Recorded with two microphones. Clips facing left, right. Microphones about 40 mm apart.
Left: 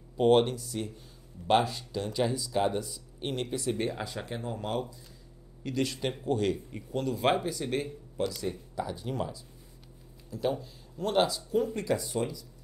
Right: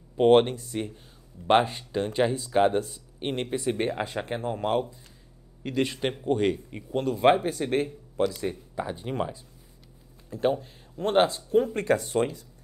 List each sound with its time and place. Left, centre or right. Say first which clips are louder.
0.2 s speech: right 4 dB; right
8.3 s speech: right 3 dB; right